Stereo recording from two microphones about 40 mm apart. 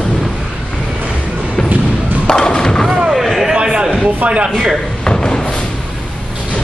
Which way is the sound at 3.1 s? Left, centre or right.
Centre.